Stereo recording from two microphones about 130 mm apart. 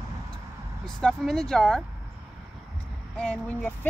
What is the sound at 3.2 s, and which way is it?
Speech, 10° left (ahead or behind).